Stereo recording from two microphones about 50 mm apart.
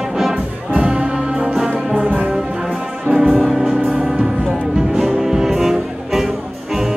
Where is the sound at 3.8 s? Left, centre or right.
Right.